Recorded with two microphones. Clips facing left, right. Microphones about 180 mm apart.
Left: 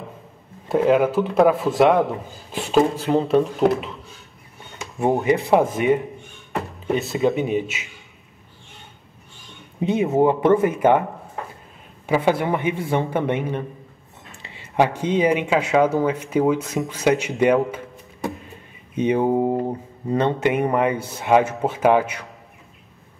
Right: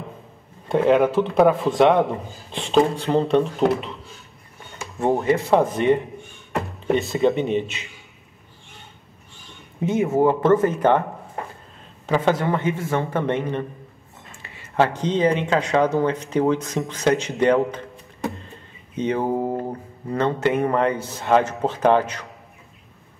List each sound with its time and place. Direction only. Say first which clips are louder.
0.7 s speech: even; 5° left (ahead or behind)
4.9 s speech: left 1 dB; 15° left (ahead or behind)
9.8 s speech: left 1 dB; 15° left (ahead or behind)
12.1 s speech: left 1 dB; 10° left (ahead or behind)
18.9 s speech: left 3 dB; 15° left (ahead or behind)